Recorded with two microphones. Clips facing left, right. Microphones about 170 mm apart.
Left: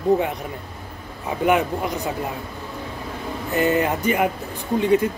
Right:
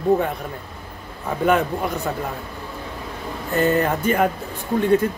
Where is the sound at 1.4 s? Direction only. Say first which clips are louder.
Even; 15° left (ahead or behind).